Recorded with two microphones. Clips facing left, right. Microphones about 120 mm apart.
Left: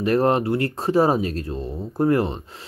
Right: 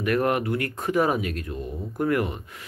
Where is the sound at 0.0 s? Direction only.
30° left (ahead or behind).